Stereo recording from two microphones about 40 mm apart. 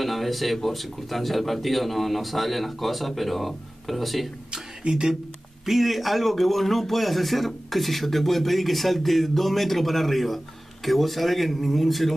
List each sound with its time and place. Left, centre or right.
0.0 s a man's voice: centre
4.5 s speech: right
5.7 s a man's voice: centre